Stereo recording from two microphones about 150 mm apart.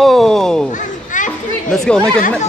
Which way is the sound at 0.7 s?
60° left (ahead or behind).